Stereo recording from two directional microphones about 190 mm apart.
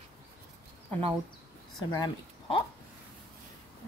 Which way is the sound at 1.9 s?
25° left (ahead or behind).